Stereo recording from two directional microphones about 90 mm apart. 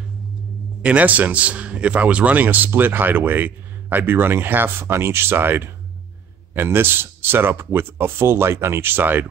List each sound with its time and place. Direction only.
0.8 s a man's voice: 15° right (ahead or behind)